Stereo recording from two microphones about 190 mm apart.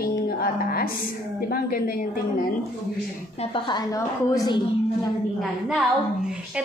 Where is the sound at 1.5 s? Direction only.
50° left (ahead or behind).